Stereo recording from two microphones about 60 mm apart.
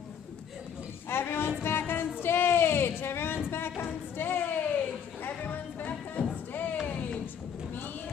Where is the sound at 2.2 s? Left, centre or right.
Left.